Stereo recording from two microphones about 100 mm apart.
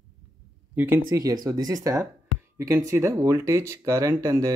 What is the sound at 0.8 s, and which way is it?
Speech, 20° right (ahead or behind).